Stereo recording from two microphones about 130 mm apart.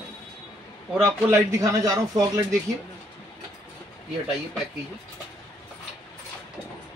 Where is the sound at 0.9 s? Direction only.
20° right (ahead or behind).